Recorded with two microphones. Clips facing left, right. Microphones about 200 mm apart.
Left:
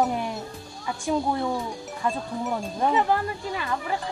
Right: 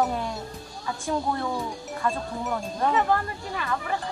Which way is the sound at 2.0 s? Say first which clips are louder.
Left 1 dB; 15° left (ahead or behind).